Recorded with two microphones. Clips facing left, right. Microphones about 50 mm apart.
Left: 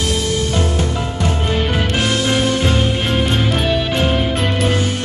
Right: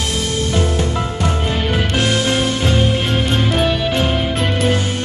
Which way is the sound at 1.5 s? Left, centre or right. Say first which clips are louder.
Left 1 dB; centre.